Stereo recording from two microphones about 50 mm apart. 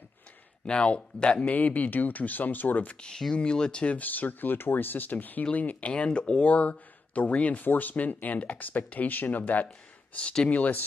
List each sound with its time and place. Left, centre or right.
0.7 s speech: left
3.0 s speech: centre
3.9 s speech: left